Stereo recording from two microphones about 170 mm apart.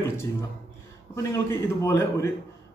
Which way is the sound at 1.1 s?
15° left (ahead or behind).